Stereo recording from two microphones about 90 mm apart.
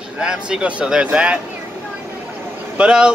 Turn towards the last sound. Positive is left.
turn(degrees=-10)  # may be behind; listen again after turning